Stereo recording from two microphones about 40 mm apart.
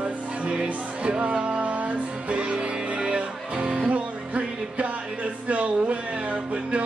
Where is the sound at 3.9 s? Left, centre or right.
Right.